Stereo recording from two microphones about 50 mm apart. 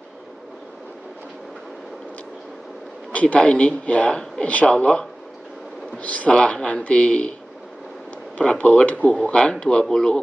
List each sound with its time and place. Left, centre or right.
3.1 s speech: left
6.0 s speech: left
8.4 s speech: left